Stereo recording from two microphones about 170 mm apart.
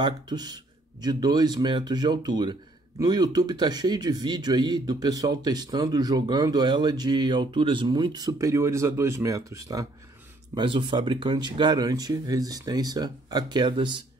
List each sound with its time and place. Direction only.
0.0 s speech: 25° right (ahead or behind)